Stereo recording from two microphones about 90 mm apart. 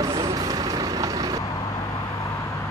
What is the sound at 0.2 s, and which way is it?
Vehicle, 40° right (ahead or behind).